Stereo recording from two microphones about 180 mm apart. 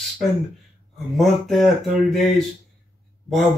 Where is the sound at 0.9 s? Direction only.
Centre (ahead or behind).